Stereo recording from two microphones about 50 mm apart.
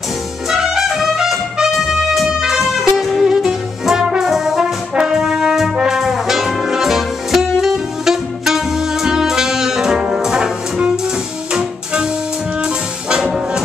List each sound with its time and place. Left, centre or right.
0.5 s music: centre